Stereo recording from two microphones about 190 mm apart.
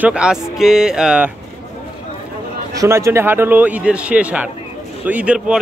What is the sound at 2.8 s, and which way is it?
Speech, 15° right (ahead or behind).